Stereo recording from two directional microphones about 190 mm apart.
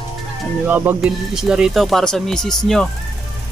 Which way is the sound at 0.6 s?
10° right (ahead or behind).